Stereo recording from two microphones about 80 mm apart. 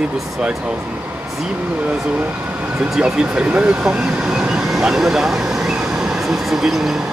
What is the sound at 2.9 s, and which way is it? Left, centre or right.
Speech, centre.